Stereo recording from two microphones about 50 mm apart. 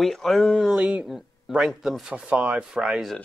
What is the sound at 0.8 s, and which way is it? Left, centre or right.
Speech, right.